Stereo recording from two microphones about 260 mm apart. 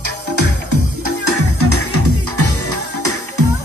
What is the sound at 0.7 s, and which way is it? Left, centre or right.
Music, right.